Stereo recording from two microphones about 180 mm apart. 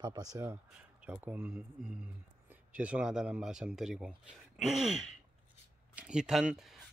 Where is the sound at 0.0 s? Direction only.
20° right (ahead or behind).